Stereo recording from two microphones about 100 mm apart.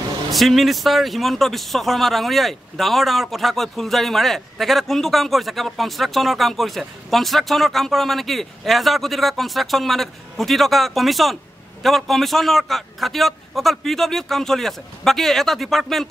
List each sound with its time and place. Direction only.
0.3 s a man's voice: centre (ahead or behind)